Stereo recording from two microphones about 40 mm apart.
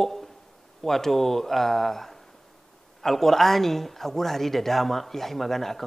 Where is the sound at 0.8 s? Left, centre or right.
Centre.